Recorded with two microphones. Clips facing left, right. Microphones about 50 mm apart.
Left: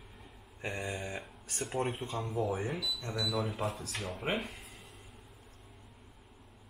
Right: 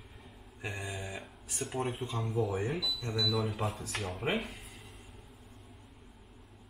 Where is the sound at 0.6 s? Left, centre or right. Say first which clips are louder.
Left 2 dB; left.